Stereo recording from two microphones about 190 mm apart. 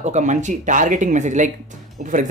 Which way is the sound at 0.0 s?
40° right (ahead or behind).